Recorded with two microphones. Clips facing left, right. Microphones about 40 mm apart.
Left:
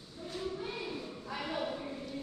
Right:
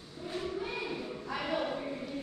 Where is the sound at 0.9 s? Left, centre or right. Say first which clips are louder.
Right 3 dB; right.